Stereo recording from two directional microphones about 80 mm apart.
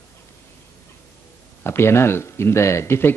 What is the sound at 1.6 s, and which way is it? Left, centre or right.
Speech, left.